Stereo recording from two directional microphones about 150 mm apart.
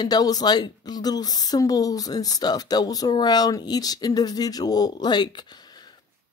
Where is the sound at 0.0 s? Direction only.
25° left (ahead or behind).